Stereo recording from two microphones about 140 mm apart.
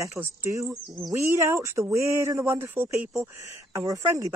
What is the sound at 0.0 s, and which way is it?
Speech, 20° right (ahead or behind).